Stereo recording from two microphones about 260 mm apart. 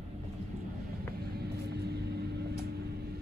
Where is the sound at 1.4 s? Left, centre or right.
Right.